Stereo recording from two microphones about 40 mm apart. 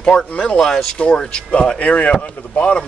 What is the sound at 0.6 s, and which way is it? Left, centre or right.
Speech, centre.